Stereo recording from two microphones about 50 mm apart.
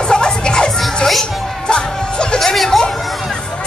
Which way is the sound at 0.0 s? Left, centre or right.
Centre.